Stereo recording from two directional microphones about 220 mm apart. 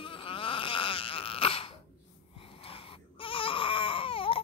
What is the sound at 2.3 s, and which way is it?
Baby cry, 25° left (ahead or behind).